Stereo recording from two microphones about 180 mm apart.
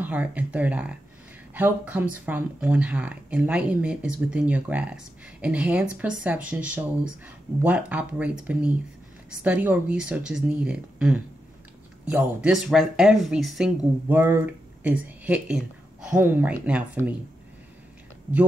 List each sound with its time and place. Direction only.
0.0 s speech: 10° right (ahead or behind)